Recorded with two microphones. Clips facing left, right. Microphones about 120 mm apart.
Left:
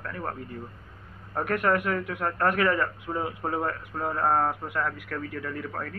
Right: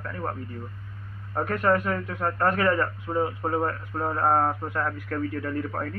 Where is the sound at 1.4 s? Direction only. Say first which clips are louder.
Right 2 dB; 20° right (ahead or behind).